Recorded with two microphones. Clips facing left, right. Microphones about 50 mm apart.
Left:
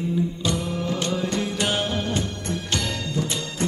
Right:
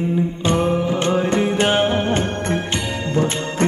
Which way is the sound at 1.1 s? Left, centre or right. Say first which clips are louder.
Right 8 dB; right.